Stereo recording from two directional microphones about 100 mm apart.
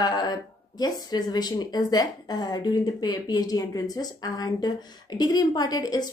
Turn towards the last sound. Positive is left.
turn(degrees=40)  # may be behind; listen again after turning